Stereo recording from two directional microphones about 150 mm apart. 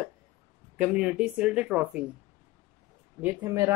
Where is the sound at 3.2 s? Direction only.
10° right (ahead or behind).